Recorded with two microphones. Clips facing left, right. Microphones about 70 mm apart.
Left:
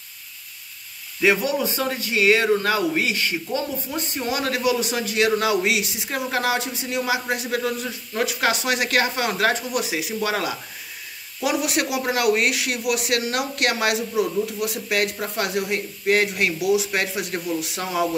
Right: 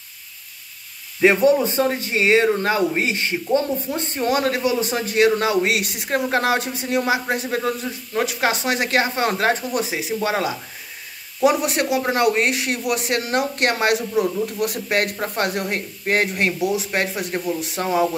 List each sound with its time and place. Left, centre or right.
1.2 s speech: right
5.8 s speech: right